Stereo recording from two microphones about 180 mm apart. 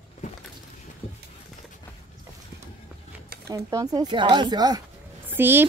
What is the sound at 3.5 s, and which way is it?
Speech, 20° right (ahead or behind).